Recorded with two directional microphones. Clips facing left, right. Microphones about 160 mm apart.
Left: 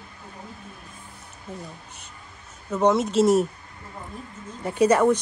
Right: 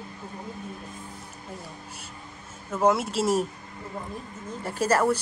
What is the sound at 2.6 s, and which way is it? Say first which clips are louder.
Speech: left 2 dB; 5° right (ahead or behind).